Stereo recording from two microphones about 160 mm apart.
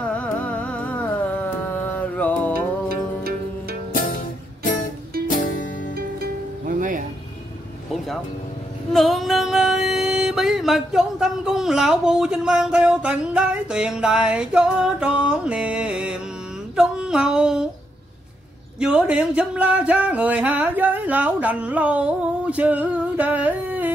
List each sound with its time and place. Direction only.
0.0 s music: 10° left (ahead or behind)
3.9 s music: 65° left (ahead or behind)
5.9 s music: 65° right (ahead or behind)
8.9 s music: centre (ahead or behind)
16.7 s a sound: 5° right (ahead or behind)
18.8 s a sound: 5° right (ahead or behind)